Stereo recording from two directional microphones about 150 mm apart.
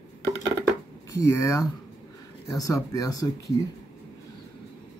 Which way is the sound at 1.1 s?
20° left (ahead or behind).